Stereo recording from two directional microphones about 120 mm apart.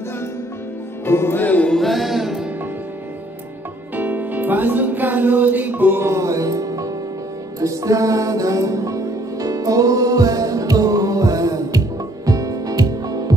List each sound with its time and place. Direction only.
1.0 s music: 20° left (ahead or behind); by 2.4 s centre (ahead or behind)
3.9 s music: 15° right (ahead or behind); by 13.3 s 30° right (ahead or behind)